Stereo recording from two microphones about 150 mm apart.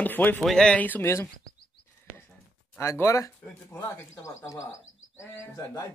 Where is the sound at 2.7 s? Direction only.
15° left (ahead or behind).